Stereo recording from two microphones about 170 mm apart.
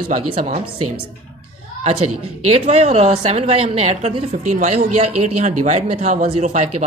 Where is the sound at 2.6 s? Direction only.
40° right (ahead or behind).